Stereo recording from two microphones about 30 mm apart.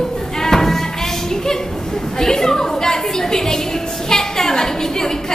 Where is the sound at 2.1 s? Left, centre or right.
Centre.